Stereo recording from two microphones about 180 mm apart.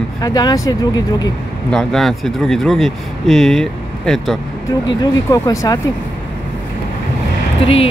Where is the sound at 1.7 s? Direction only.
Centre (ahead or behind).